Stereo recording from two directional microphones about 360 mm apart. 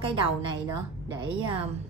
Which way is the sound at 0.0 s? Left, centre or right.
Centre.